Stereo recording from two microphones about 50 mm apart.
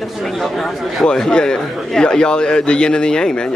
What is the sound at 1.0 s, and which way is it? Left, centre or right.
A man's voice, centre.